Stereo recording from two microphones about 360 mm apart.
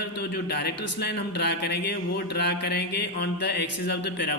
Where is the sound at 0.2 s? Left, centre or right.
Left.